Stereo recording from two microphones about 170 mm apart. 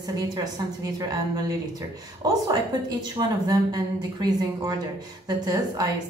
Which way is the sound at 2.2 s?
20° right (ahead or behind).